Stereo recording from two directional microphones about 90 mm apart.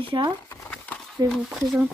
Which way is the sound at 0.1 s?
55° right (ahead or behind).